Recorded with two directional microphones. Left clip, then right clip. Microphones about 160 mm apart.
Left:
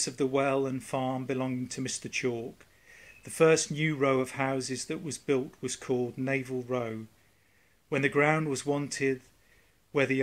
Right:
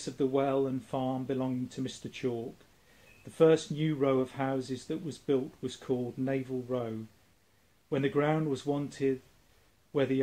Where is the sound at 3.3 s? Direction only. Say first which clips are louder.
Left 1 dB; 15° left (ahead or behind).